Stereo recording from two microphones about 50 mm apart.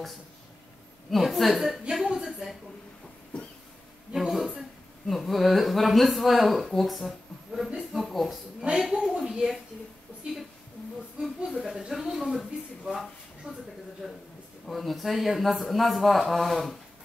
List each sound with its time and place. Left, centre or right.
1.1 s speech: centre
2.1 s a sound: centre
4.1 s a sound: centre
4.6 s a woman's voice: centre
11.1 s a woman's voice: centre
13.5 s speech: right
14.0 s speech: centre